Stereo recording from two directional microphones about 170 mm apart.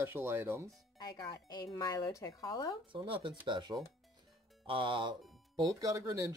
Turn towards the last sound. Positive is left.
turn(degrees=-20)  # may be behind; listen again after turning